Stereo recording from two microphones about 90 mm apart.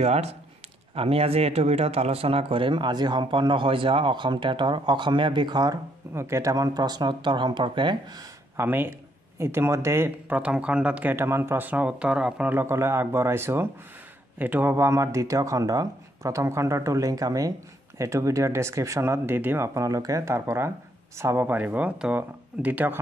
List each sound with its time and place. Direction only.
0.9 s speech: 90° right; by 5.8 s 50° right (ahead or behind)
6.1 s speech: 30° right (ahead or behind)
6.5 s speech: 45° right (ahead or behind); by 8.0 s 60° right (ahead or behind)
8.5 s speech: 25° right (ahead or behind)
10.3 s speech: 15° right (ahead or behind)
11.1 s speech: 25° right (ahead or behind); by 12.5 s 10° right (ahead or behind)
12.5 s speech: 30° right (ahead or behind)